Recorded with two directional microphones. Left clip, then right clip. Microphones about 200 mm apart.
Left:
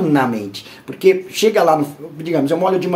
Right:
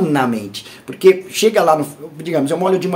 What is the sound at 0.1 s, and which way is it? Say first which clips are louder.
Speech: left 1 dB; 20° right (ahead or behind).